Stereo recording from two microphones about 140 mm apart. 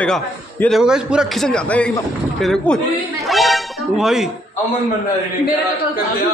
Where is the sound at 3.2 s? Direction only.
Centre (ahead or behind).